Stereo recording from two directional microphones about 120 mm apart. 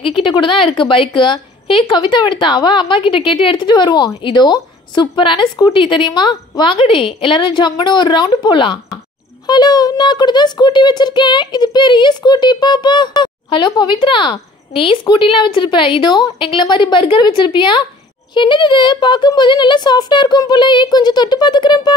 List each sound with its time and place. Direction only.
0.0 s a child's voice: 40° left (ahead or behind)